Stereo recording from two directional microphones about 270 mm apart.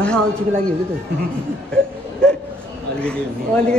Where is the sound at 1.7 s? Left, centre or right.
Centre.